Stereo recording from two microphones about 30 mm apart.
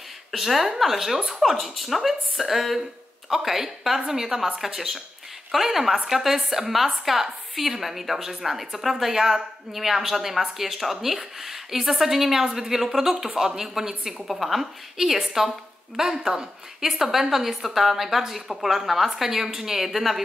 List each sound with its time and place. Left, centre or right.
0.4 s a woman's voice: centre
9.1 s a woman's voice: centre
14.2 s a woman's voice: centre